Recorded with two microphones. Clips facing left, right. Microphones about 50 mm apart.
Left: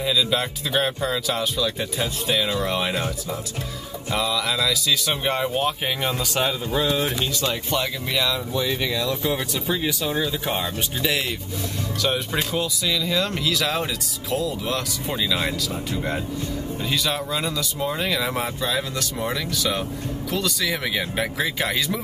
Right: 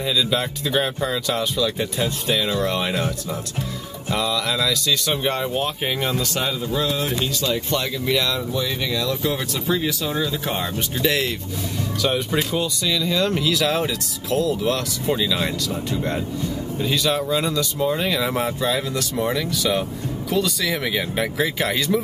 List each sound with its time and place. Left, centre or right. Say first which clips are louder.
0.0 s speech: right 1 dB; centre
8.6 s speech: even; centre
10.6 s speech: right 3 dB; centre